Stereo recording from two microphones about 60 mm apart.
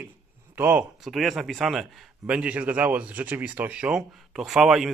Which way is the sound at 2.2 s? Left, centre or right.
Right.